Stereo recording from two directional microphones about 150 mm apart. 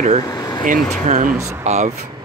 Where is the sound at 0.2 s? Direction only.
25° left (ahead or behind).